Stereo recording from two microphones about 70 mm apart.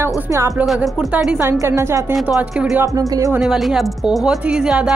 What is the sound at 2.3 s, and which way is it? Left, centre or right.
Speech, centre.